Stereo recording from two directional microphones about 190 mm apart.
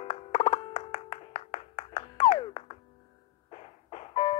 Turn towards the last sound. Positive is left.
turn(degrees=30)  # may be behind; listen again after turning